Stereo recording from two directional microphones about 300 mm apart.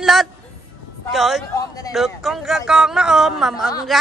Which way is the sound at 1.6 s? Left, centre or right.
Centre.